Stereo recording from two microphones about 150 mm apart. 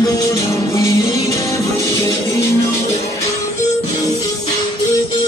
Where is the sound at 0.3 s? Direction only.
20° left (ahead or behind).